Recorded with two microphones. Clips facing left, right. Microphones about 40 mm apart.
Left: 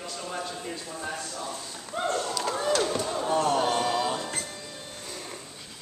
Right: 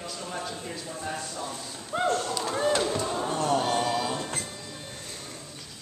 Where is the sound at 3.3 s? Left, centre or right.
Left.